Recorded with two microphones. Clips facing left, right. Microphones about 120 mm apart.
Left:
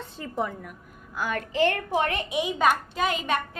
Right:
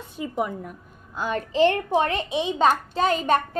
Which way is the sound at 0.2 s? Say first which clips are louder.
Right 3 dB; 15° right (ahead or behind).